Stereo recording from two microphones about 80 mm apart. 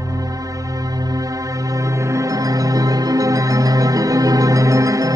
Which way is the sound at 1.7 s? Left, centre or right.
Right.